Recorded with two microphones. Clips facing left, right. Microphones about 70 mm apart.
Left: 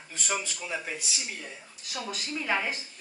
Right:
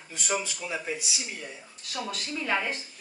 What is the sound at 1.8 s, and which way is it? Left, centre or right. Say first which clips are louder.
Speech: right 1 dB; centre.